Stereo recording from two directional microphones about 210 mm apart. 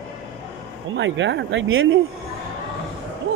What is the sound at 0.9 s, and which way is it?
Speech, 60° right (ahead or behind).